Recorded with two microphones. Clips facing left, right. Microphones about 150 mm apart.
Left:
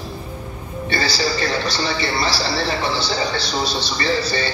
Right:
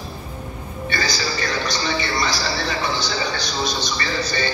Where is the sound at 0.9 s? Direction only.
30° left (ahead or behind).